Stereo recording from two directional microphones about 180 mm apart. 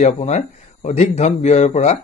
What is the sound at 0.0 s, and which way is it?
Speech, 40° left (ahead or behind).